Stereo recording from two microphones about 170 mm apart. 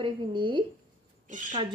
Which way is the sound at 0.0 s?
30° right (ahead or behind).